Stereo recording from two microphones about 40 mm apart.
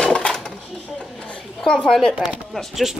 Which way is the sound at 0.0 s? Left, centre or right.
Centre.